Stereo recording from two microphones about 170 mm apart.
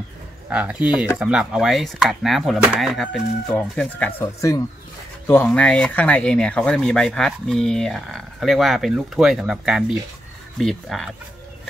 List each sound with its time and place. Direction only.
0.5 s speech: 5° right (ahead or behind)
4.2 s speech: 20° left (ahead or behind); by 11.1 s centre (ahead or behind)